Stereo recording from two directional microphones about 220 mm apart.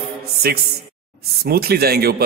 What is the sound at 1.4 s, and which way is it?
Speech, 45° right (ahead or behind).